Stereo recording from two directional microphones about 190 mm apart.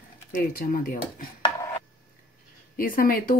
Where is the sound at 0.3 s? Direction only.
50° left (ahead or behind).